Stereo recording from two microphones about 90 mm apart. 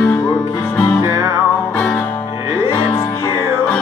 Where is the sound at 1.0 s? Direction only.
35° right (ahead or behind).